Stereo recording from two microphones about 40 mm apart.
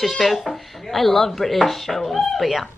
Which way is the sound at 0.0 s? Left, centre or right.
Centre.